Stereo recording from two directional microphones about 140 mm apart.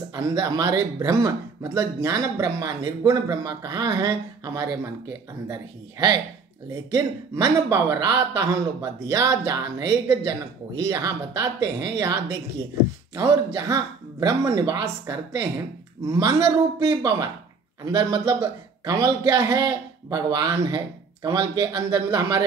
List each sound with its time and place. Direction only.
0.1 s speech: 25° right (ahead or behind)